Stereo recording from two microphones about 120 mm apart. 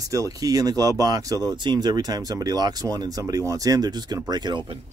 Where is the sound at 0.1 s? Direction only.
30° right (ahead or behind).